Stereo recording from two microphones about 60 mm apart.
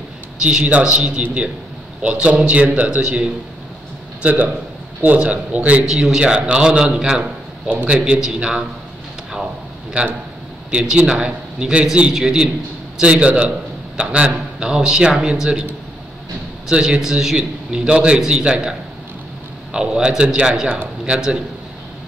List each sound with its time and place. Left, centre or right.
0.4 s a man's voice: centre
4.2 s a man's voice: right
5.9 s a man's voice: centre
10.7 s a man's voice: centre
13.0 s a man's voice: right
16.6 s a man's voice: centre